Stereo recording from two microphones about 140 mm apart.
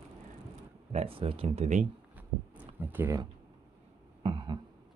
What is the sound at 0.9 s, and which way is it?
Speech, 45° right (ahead or behind).